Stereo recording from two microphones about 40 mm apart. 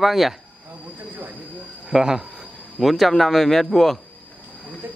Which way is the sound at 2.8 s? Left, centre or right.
Centre.